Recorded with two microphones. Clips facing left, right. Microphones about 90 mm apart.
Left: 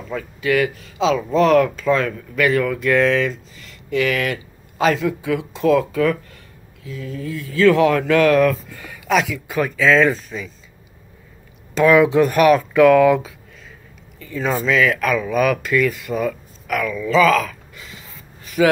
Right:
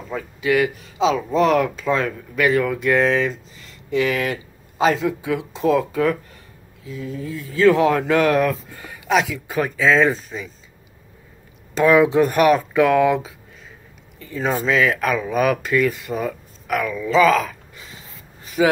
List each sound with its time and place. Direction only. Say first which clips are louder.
0.1 s speech: even; 15° right (ahead or behind)
11.7 s speech: left 1 dB; 25° right (ahead or behind)
18.4 s a sound: left 1 dB; 20° right (ahead or behind)